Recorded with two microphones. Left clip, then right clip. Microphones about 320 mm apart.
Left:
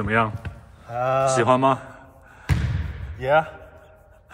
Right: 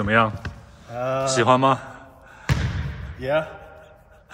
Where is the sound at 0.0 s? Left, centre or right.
Centre.